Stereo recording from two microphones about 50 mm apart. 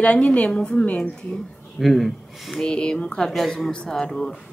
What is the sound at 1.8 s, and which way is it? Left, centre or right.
Speech, centre.